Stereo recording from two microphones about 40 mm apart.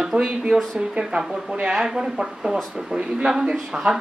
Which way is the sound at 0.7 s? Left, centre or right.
Right.